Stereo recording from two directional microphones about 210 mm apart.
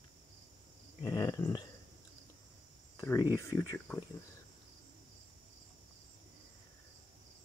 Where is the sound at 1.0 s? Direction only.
15° left (ahead or behind).